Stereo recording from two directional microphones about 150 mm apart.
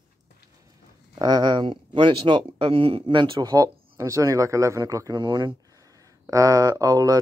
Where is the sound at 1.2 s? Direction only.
30° right (ahead or behind).